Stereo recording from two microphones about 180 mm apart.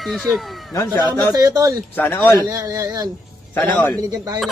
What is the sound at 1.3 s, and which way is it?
Speech, 20° right (ahead or behind).